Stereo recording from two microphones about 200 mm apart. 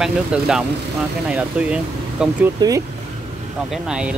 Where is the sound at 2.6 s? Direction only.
20° right (ahead or behind).